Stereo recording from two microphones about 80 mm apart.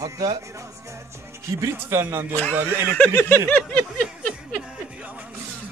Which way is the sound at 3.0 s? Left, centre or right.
Left.